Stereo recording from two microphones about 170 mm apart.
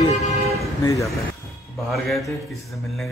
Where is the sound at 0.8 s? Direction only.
20° left (ahead or behind).